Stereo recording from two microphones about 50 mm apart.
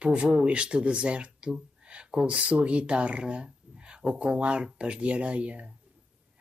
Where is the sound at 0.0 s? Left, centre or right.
Right.